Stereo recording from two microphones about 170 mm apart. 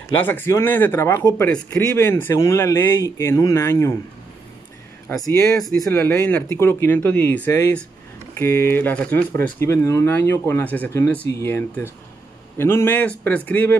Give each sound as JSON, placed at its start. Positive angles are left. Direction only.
{"t": 0.3, "sound": "speech", "side_deg": 15}
{"t": 5.1, "sound": "speech", "side_deg": 20}